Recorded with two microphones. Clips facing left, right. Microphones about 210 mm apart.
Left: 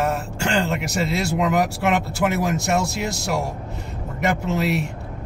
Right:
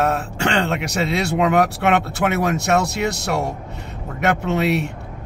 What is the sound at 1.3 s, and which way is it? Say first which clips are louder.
Speech: right 4 dB; 65° right (ahead or behind).